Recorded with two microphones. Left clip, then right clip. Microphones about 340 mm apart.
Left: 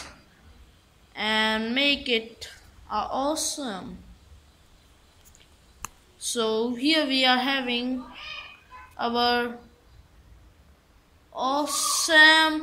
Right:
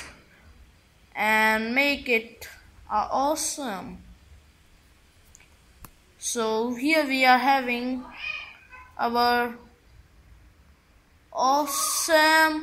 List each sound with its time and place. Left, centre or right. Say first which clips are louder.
1.1 s a woman's voice: right 3 dB; centre
6.3 s speech: even; centre
8.9 s speech: right 1 dB; centre
11.3 s speech: right 3 dB; centre